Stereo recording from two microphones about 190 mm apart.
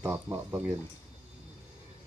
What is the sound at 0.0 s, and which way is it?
Speech, 15° right (ahead or behind).